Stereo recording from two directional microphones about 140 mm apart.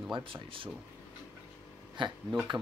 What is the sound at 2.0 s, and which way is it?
Speech, 35° right (ahead or behind).